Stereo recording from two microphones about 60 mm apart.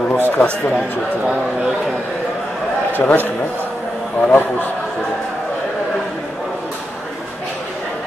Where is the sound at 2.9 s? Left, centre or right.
Left.